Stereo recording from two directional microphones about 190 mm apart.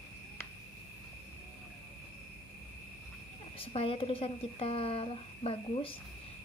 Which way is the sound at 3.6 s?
30° left (ahead or behind).